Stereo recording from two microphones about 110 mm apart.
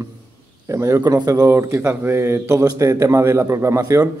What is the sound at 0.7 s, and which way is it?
A man's voice, 30° right (ahead or behind).